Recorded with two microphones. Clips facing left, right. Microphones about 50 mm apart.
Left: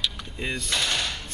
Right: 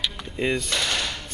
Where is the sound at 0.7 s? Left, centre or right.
Centre.